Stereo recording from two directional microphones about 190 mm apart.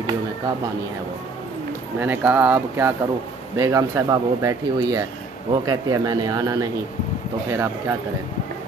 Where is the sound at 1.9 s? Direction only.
10° right (ahead or behind).